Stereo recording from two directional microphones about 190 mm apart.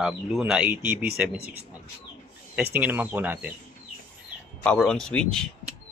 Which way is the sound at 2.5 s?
10° right (ahead or behind).